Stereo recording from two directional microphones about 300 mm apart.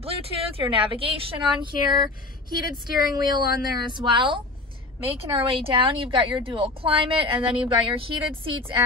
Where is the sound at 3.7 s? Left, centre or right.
Centre.